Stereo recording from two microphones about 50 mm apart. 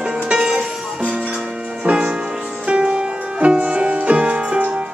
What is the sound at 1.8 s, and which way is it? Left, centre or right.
Music, centre.